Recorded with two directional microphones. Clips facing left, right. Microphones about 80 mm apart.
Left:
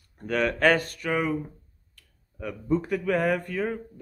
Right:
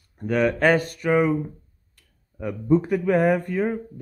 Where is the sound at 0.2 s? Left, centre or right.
Centre.